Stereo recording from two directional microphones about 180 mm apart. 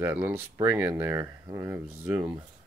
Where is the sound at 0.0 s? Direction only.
10° right (ahead or behind).